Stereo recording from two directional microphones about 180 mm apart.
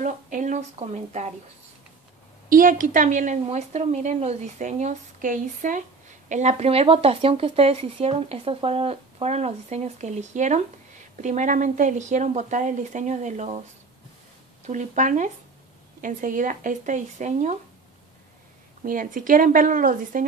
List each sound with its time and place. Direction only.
0.0 s speech: 45° right (ahead or behind)
2.5 s a woman's voice: 50° right (ahead or behind)
14.7 s a woman's voice: 45° right (ahead or behind)
18.8 s a woman's voice: 45° right (ahead or behind)